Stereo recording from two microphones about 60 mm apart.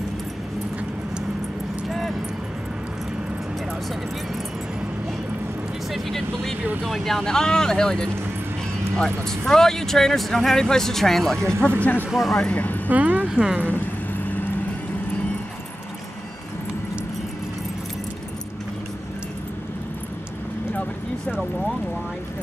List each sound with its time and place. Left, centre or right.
1.9 s keys jangling: centre
5.9 s vehicle: centre
6.8 s speech: centre
11.8 s speech: left
12.1 s speech: centre
12.4 s speech: left
12.9 s speech: right
13.3 s speech: centre